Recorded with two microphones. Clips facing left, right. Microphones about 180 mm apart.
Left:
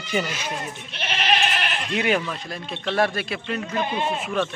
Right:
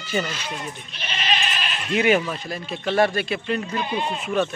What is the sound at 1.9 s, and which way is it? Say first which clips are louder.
Speech: right 4 dB; centre (ahead or behind).